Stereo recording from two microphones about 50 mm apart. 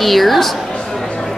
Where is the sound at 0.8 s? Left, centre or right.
Centre.